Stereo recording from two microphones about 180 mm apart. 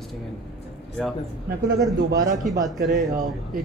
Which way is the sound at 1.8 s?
20° right (ahead or behind).